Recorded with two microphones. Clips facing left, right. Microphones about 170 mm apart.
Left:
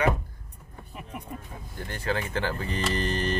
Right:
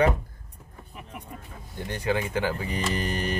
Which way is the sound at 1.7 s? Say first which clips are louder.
Right 3 dB; 20° right (ahead or behind).